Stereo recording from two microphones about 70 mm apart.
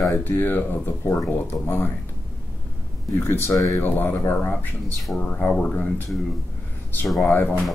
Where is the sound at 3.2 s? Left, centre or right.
Left.